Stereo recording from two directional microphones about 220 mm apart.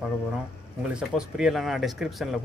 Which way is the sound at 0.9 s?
5° right (ahead or behind).